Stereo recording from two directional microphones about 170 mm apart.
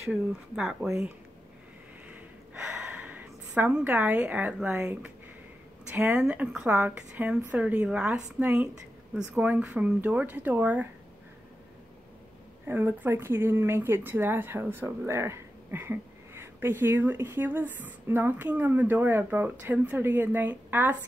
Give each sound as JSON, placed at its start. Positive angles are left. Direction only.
{"t": 0.1, "sound": "speech", "side_deg": -5}
{"t": 0.8, "sound": "speech", "side_deg": -15}
{"t": 2.0, "sound": "a sound", "side_deg": -10}
{"t": 5.9, "sound": "speech", "side_deg": -10}
{"t": 12.6, "sound": "speech", "side_deg": -10}